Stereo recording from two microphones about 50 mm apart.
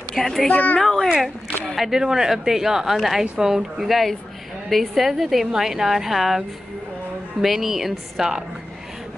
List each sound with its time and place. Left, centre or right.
0.1 s speech: centre
0.5 s a child's voice: left
0.7 s a sound: centre
1.8 s a woman's voice: centre
7.4 s a woman's voice: centre